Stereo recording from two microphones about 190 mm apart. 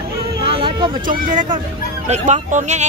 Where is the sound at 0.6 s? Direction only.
25° right (ahead or behind).